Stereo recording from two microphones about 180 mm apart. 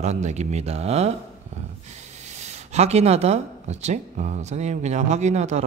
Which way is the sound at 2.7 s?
35° right (ahead or behind).